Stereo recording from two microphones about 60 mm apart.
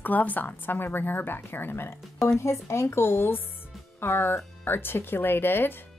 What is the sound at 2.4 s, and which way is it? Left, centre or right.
A woman's voice, left.